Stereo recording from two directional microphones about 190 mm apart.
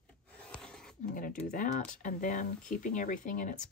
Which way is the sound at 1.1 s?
45° left (ahead or behind).